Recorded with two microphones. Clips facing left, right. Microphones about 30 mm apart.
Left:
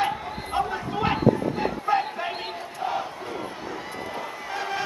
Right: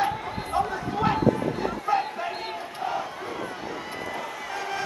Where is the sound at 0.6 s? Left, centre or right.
Left.